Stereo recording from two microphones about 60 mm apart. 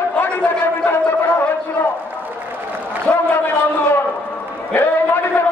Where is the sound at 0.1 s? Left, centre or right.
Left.